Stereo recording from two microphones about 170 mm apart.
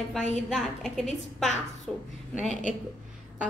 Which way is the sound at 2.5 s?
45° right (ahead or behind).